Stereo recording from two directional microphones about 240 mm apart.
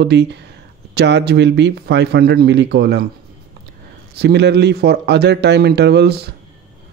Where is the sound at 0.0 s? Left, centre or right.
Right.